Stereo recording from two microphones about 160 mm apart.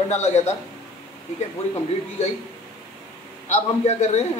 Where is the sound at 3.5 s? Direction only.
45° left (ahead or behind).